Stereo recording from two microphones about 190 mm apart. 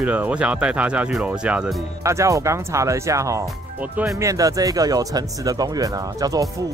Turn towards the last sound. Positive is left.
turn(degrees=-20)  # may be behind; listen again after turning